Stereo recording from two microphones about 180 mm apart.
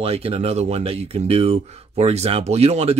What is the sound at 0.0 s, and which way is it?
Speech, 35° right (ahead or behind).